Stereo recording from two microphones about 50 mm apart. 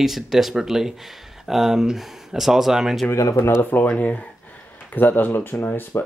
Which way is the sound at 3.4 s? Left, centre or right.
Left.